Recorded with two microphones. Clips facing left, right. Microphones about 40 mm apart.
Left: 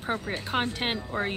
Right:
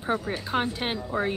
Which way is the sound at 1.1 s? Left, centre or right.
Left.